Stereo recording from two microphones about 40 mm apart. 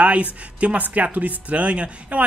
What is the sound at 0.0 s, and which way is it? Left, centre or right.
Speech, right.